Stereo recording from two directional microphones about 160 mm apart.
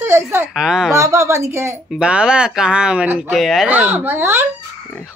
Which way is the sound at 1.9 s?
5° right (ahead or behind).